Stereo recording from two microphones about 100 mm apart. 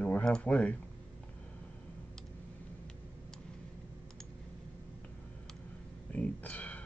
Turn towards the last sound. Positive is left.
turn(degrees=15)  # may be behind; listen again after turning